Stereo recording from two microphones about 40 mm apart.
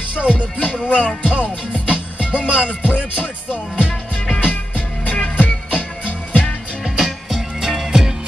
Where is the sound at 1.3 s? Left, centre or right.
Right.